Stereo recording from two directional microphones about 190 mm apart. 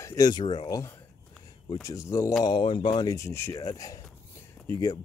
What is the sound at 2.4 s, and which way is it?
Speech, 25° left (ahead or behind).